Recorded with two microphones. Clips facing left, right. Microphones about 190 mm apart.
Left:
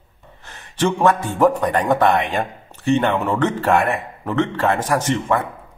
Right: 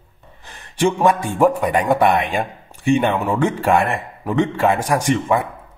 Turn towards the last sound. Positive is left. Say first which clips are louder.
# right 2 dB
turn(degrees=-15)  # may be behind; listen again after turning